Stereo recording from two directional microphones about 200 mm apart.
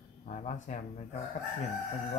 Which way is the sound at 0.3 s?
40° left (ahead or behind).